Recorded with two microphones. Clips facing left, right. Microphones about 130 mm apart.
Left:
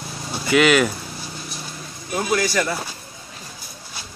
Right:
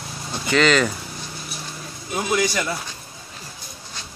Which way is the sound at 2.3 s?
20° right (ahead or behind).